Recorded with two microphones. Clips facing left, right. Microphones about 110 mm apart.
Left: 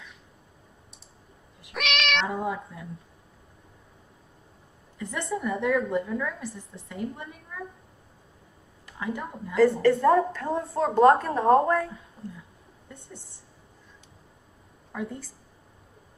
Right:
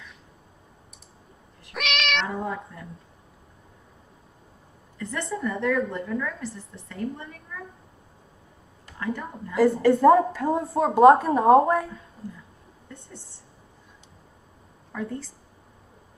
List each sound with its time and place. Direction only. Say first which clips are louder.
1.7 s cat: even; centre (ahead or behind)
4.9 s a sound: right 2 dB; 15° left (ahead or behind)
5.3 s a woman's voice: even; 15° left (ahead or behind)
9.0 s a woman's voice: right 2 dB; 15° left (ahead or behind)
10.0 s speech: right 4 dB; 10° right (ahead or behind)
12.8 s a sound: right 1 dB; 15° left (ahead or behind)
14.9 s a woman's voice: right 2 dB; 10° left (ahead or behind)